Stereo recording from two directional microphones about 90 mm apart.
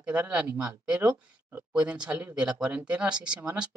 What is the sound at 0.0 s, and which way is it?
Speech, 15° right (ahead or behind).